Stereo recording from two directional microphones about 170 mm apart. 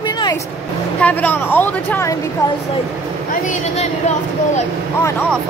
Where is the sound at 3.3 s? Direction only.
45° left (ahead or behind).